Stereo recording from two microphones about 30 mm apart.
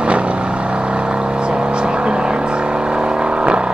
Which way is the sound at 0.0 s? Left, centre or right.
Right.